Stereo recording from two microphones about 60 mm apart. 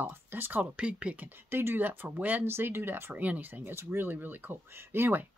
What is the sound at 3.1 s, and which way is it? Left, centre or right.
Speech, right.